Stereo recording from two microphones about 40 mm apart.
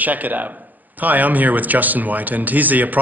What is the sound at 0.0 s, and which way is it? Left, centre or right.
Speech, right.